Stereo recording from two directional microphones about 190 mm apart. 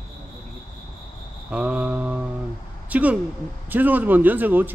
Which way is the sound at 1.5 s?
5° right (ahead or behind).